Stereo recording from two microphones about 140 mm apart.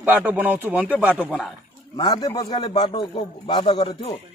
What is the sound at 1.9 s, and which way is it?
A man's voice, 35° left (ahead or behind).